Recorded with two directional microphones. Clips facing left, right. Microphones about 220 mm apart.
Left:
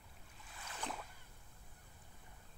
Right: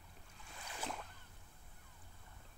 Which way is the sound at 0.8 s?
Centre (ahead or behind).